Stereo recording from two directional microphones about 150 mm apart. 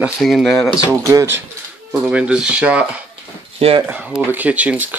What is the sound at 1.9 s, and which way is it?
Speech, 10° right (ahead or behind).